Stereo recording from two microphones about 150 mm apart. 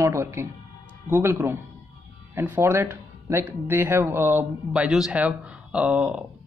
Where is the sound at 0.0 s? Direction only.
20° right (ahead or behind).